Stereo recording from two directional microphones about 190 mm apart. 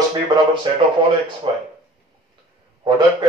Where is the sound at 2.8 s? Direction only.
25° right (ahead or behind).